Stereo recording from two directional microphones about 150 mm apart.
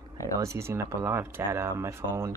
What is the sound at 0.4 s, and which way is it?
Speech, 20° right (ahead or behind).